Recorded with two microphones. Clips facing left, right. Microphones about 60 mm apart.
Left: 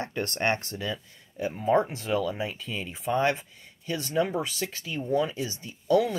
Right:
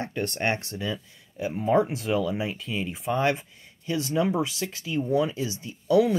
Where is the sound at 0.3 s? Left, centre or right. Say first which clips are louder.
Left 2 dB; centre.